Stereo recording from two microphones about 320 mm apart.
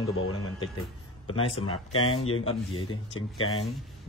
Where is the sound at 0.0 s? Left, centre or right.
Left.